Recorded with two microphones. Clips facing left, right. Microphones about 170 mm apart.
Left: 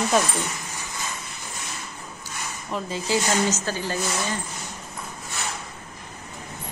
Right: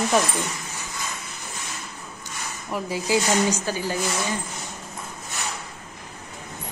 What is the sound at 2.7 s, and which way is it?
A woman's voice, 15° right (ahead or behind).